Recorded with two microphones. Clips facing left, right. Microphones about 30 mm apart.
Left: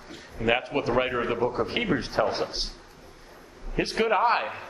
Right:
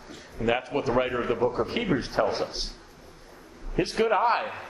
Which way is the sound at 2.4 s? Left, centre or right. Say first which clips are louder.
Left 1 dB; left.